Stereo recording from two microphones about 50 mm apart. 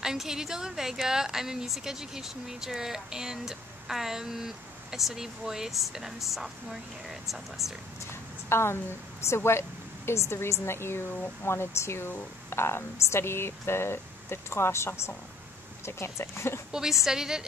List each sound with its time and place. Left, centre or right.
0.0 s speech: centre
8.1 s a sound: left
9.2 s speech: left
17.0 s speech: centre